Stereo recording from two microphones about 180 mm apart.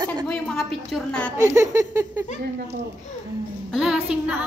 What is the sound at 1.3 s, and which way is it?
Speech, 15° right (ahead or behind).